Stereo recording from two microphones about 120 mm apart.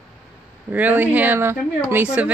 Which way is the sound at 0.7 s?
15° right (ahead or behind).